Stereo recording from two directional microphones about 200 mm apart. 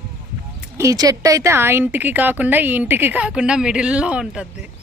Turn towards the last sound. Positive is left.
turn(degrees=-5)  # may be behind; listen again after turning